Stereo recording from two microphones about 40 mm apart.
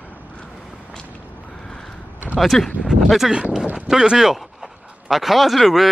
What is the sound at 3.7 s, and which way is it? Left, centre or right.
Speech, centre.